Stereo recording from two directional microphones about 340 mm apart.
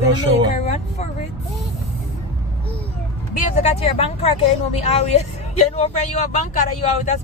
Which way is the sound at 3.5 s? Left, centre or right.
Centre.